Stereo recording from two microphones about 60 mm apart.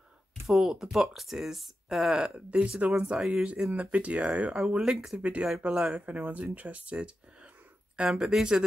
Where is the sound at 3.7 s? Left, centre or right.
Right.